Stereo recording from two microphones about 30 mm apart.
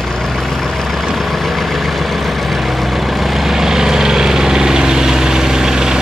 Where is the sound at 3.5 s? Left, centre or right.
Centre.